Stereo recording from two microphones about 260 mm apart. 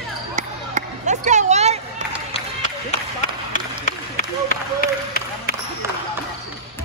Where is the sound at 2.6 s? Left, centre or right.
Left.